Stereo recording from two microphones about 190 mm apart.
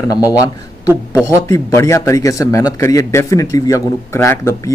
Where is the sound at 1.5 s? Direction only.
15° left (ahead or behind).